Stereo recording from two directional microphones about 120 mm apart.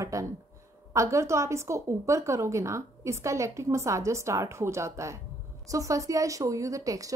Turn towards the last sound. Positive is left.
turn(degrees=-30)  # may be behind; listen again after turning